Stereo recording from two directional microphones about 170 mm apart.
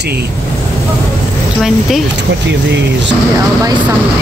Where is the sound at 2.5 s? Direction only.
90° right.